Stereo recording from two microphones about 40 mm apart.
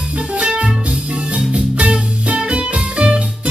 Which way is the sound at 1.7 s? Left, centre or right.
Right.